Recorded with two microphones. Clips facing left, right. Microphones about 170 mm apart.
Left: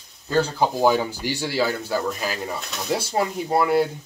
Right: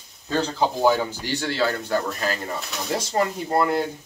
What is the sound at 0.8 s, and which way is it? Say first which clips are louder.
Speech: left 1 dB; 10° left (ahead or behind).